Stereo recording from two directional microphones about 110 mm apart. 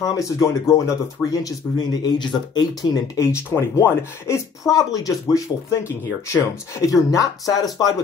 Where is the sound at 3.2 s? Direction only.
25° left (ahead or behind).